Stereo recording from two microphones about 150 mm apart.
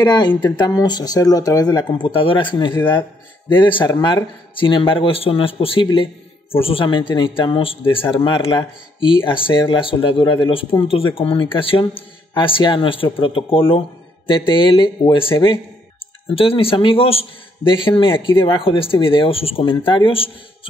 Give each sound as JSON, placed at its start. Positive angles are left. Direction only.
{"t": 0.0, "sound": "speech", "side_deg": 30}